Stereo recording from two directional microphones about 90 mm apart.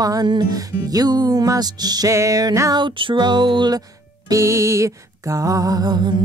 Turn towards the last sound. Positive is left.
turn(degrees=-55)  # may be behind; listen again after turning